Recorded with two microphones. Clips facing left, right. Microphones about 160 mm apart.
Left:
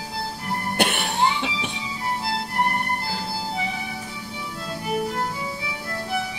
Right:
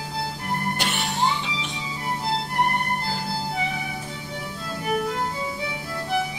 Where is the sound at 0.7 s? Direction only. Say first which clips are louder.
Left 4 dB; 60° left (ahead or behind).